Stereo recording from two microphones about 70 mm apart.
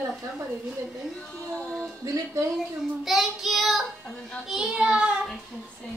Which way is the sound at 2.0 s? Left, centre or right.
Right.